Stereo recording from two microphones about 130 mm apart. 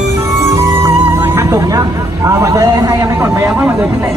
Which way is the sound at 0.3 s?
25° right (ahead or behind).